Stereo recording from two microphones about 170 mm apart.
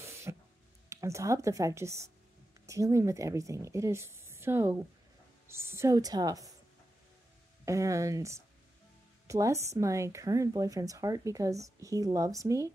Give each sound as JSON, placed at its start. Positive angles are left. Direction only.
{"t": 0.0, "sound": "a sound", "side_deg": -15}
{"t": 0.8, "sound": "speech", "side_deg": -15}
{"t": 7.6, "sound": "speech", "side_deg": -20}